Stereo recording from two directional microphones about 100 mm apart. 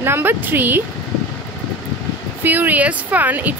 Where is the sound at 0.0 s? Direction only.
20° right (ahead or behind).